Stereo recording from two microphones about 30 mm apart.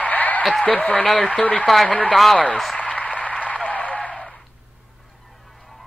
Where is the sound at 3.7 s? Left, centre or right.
Left.